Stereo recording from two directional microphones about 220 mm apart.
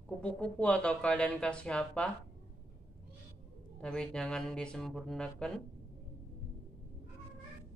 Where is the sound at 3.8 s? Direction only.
5° left (ahead or behind).